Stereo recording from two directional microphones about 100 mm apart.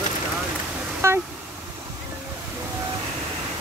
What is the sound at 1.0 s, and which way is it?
Vehicle, 25° right (ahead or behind).